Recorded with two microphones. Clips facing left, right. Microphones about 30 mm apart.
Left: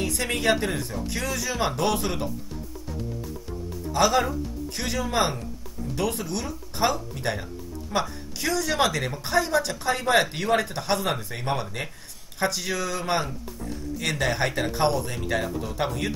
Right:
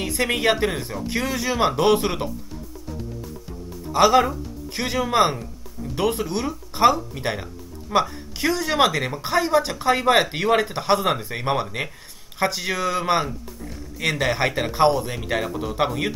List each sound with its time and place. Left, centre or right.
0.0 s speech: right
3.9 s speech: centre